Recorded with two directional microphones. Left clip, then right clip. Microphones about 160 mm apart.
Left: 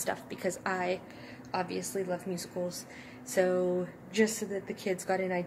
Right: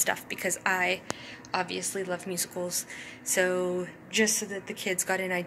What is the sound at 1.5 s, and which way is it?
A woman's voice, centre (ahead or behind).